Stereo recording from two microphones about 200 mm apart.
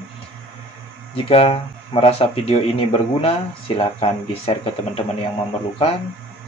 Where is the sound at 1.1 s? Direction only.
30° left (ahead or behind).